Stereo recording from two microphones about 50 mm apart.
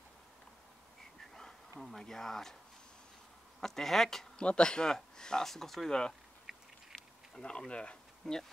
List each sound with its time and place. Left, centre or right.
1.8 s speech: centre
3.6 s speech: centre
4.4 s speech: centre
6.5 s a sound: centre
7.3 s speech: centre